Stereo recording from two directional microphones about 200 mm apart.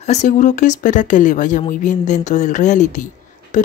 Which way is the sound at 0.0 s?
35° left (ahead or behind).